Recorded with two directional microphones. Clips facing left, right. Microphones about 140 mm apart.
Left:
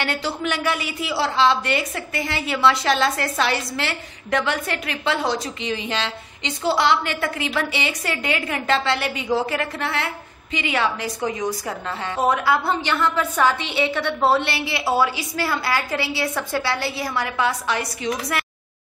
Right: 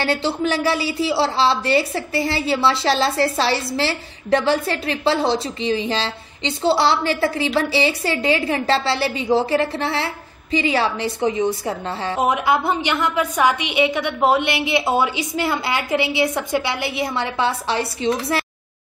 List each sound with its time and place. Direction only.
0.0 s a woman's voice: 30° right (ahead or behind)
12.2 s a woman's voice: 15° right (ahead or behind)